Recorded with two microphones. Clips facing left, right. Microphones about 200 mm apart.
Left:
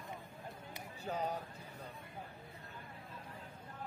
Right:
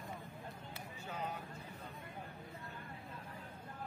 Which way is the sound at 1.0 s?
40° left (ahead or behind).